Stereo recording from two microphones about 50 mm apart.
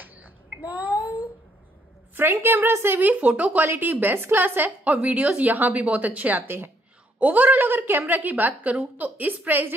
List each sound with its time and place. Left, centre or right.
0.0 s a sound: right
2.1 s a woman's voice: right
3.0 s a woman's voice: right
3.7 s a woman's voice: right
4.8 s a woman's voice: right
6.4 s a woman's voice: right
7.2 s a woman's voice: right